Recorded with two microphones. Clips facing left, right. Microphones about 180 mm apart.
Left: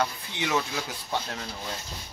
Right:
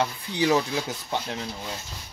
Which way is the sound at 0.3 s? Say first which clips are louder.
Right 6 dB; 35° right (ahead or behind).